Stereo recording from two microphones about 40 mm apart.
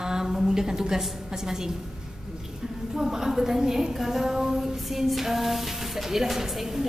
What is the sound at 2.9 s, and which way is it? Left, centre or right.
A woman's voice, centre.